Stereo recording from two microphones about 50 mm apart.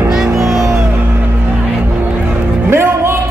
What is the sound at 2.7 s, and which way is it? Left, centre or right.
Music, right.